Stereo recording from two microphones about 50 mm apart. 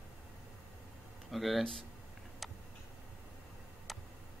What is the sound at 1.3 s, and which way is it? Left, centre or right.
Speech, centre.